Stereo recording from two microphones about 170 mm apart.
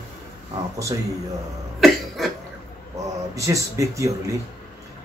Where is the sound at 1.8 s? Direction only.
Centre (ahead or behind).